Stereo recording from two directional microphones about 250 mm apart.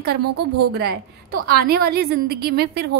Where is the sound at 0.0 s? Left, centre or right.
Right.